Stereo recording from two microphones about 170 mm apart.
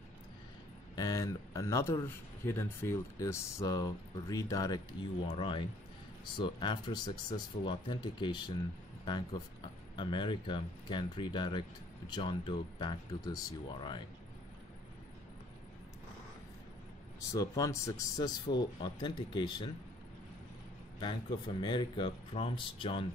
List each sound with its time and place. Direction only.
0.9 s speech: 20° left (ahead or behind)
9.9 s speech: 25° left (ahead or behind)
17.3 s speech: 20° left (ahead or behind)
21.0 s speech: 25° left (ahead or behind)